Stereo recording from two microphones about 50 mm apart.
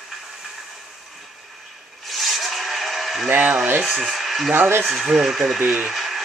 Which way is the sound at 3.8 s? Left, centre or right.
Centre.